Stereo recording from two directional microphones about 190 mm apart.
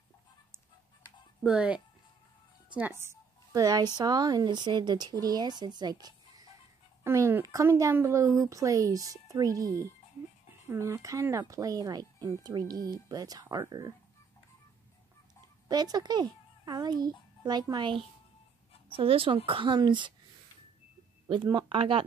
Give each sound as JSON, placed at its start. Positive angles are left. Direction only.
{"t": 1.4, "sound": "a woman's voice", "side_deg": -5}
{"t": 15.7, "sound": "a child's voice", "side_deg": -20}
{"t": 21.3, "sound": "a woman's voice", "side_deg": -25}